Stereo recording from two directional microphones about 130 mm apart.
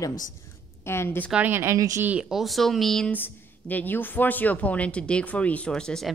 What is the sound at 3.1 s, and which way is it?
Speech, 15° left (ahead or behind).